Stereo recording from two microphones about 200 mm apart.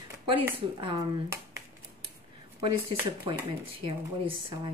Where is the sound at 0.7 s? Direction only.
25° right (ahead or behind).